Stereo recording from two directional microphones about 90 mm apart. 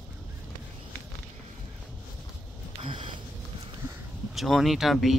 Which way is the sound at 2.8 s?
70° right (ahead or behind).